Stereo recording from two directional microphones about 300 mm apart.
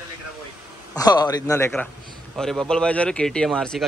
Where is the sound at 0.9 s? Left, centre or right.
Centre.